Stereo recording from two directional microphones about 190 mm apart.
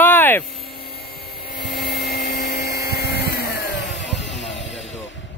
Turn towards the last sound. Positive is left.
turn(degrees=70)  # may be behind; listen again after turning